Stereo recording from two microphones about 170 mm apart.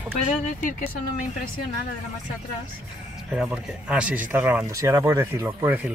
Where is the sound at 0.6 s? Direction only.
50° left (ahead or behind).